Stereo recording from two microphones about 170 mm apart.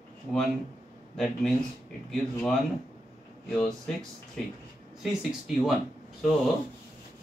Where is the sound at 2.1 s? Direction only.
5° left (ahead or behind).